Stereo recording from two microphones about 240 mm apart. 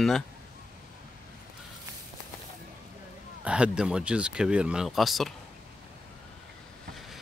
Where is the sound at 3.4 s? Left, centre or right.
Centre.